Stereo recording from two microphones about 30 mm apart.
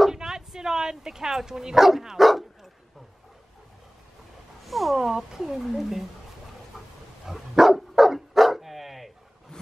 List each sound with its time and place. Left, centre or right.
0.2 s bow-wow: centre
1.9 s dog: centre
4.6 s speech: centre
4.9 s speech: centre
7.2 s dog: centre